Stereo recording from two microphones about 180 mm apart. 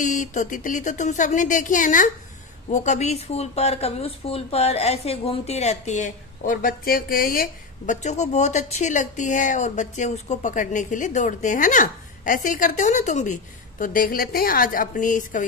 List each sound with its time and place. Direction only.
0.0 s speech: 45° left (ahead or behind)